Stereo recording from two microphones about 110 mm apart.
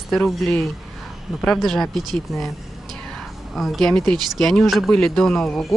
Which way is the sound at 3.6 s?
Centre (ahead or behind).